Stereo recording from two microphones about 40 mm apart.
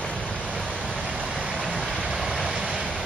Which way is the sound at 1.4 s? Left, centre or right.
Right.